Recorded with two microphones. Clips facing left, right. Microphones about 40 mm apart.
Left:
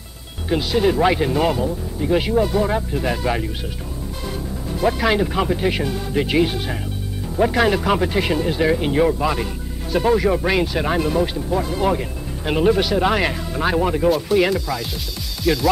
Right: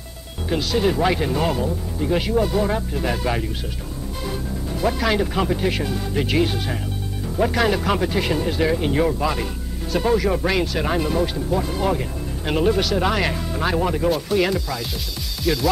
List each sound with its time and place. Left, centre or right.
0.5 s speech: centre
4.8 s speech: centre